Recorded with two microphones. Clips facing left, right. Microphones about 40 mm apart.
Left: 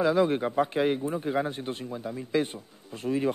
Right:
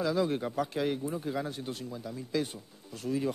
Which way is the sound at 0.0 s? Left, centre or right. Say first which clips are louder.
Left 6 dB; left.